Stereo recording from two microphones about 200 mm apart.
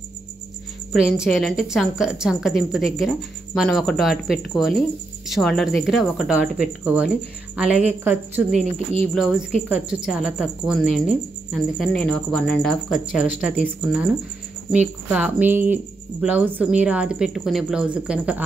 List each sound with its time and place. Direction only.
0.9 s a woman's voice: 5° right (ahead or behind)
8.7 s speech: 30° right (ahead or behind)
9.1 s speech: centre (ahead or behind)